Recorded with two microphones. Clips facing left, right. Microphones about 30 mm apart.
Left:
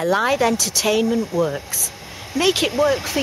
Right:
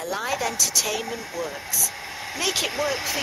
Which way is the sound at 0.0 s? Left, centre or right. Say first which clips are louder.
Left 9 dB; left.